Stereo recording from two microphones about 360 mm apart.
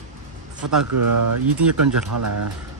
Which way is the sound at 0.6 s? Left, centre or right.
Right.